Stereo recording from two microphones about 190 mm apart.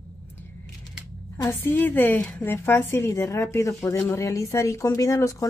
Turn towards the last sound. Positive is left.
turn(degrees=15)  # may be behind; listen again after turning